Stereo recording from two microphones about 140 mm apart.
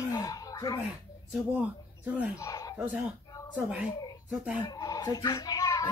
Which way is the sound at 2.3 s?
25° left (ahead or behind).